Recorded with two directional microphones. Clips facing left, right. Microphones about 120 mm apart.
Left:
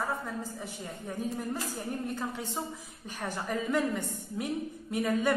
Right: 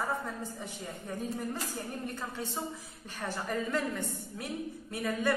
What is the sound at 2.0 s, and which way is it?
A man's voice, 15° left (ahead or behind).